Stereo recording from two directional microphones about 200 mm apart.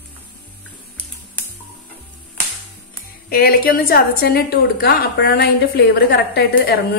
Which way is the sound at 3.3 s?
45° left (ahead or behind).